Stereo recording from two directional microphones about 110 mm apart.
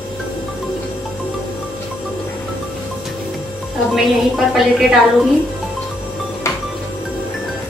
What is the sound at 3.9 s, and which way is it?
A woman's voice, centre (ahead or behind).